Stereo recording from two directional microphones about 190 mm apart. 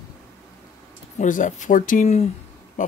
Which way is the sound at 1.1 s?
40° left (ahead or behind).